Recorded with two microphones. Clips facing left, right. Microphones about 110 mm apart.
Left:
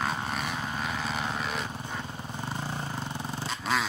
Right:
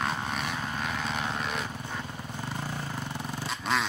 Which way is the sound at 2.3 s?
25° left (ahead or behind).